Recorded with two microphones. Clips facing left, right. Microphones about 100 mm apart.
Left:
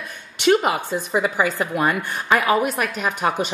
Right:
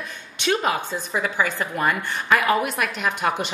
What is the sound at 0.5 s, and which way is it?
A woman's voice, 15° left (ahead or behind).